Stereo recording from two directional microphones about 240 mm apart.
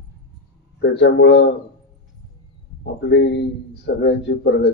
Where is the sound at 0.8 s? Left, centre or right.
Left.